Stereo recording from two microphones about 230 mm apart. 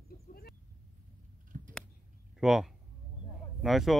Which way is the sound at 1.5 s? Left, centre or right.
Right.